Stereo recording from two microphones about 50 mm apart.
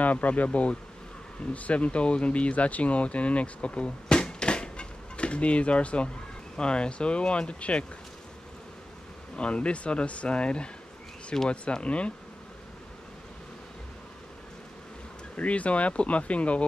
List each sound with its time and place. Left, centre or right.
0.0 s speech: left
9.4 s speech: left
15.3 s speech: left